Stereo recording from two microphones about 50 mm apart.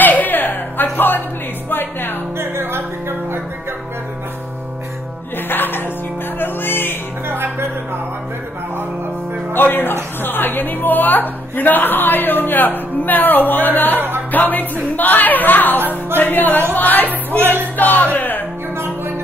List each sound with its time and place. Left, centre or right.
0.0 s music: left
2.3 s music: right
5.5 s music: left
7.2 s music: right
9.5 s a woman's voice: left
13.9 s music: right
14.3 s a woman's voice: left
15.8 s music: right
16.2 s a woman's voice: left
17.4 s music: right
17.7 s a woman's voice: left